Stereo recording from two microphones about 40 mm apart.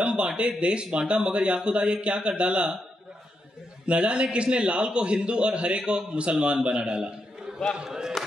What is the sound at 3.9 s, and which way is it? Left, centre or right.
A man's voice, right.